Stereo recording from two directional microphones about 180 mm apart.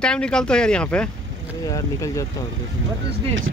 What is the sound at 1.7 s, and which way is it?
Speech, 20° left (ahead or behind).